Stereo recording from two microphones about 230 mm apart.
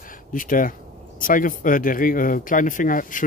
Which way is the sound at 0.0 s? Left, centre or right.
Left.